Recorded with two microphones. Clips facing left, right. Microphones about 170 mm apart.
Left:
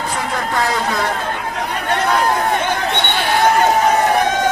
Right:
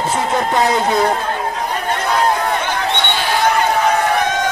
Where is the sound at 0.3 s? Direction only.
20° right (ahead or behind).